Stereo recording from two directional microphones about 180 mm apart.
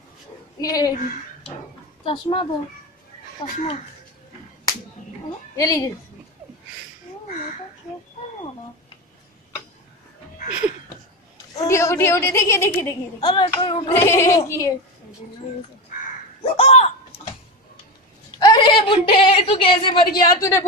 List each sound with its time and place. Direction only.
0.6 s hands: 20° left (ahead or behind)
2.0 s hands: 30° left (ahead or behind)
5.6 s hands: 20° left (ahead or behind)
7.2 s a sound: 40° left (ahead or behind)
11.5 s a woman's voice: 20° left (ahead or behind)
13.2 s hands: 30° left (ahead or behind)
13.9 s a woman's voice: 15° left (ahead or behind)
16.4 s speech: 35° left (ahead or behind)
18.4 s a woman's voice: 25° left (ahead or behind)
20.2 s hands: 20° left (ahead or behind)